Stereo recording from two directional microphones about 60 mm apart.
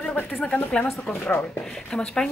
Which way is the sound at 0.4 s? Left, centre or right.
Left.